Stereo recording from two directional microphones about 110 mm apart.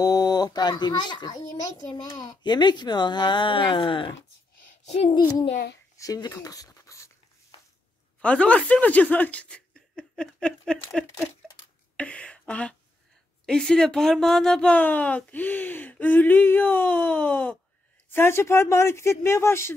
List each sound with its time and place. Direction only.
0.0 s a child's voice: 35° left (ahead or behind); by 4.1 s 50° left (ahead or behind)
4.8 s a child's voice: 75° left (ahead or behind)
5.9 s speech: 35° left (ahead or behind)
8.2 s speech: 10° left (ahead or behind)
12.0 s a sound: 10° left (ahead or behind)
13.5 s speech: 5° left (ahead or behind); by 19.7 s 25° left (ahead or behind)